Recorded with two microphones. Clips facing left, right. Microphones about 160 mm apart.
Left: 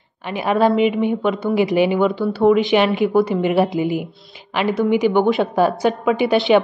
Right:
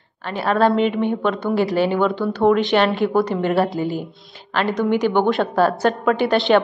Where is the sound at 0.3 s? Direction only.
10° left (ahead or behind).